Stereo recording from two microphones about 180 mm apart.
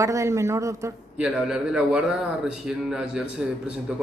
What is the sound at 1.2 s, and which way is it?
A man's voice, 5° right (ahead or behind).